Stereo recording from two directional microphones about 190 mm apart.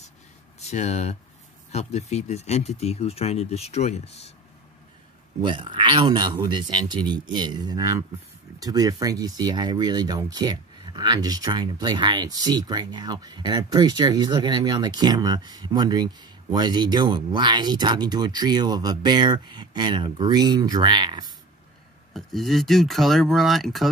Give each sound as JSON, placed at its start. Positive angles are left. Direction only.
{"t": 0.6, "sound": "speech", "side_deg": 35}
{"t": 5.4, "sound": "speech", "side_deg": -25}
{"t": 22.1, "sound": "speech", "side_deg": 0}